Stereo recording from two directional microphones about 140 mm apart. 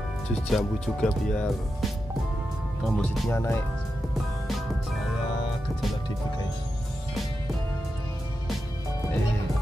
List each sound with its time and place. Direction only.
0.5 s speech: centre (ahead or behind)
3.3 s speech: 20° left (ahead or behind)